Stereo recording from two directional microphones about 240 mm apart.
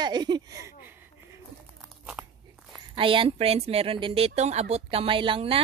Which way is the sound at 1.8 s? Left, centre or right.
Centre.